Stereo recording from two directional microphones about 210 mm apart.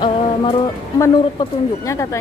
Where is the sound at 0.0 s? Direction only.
20° left (ahead or behind).